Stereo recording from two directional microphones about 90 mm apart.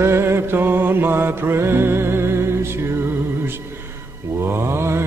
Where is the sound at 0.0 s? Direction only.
30° right (ahead or behind).